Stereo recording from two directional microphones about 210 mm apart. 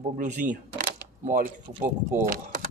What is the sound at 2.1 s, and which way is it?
Speech, 40° right (ahead or behind).